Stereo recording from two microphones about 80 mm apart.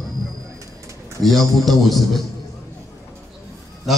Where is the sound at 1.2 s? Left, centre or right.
Centre.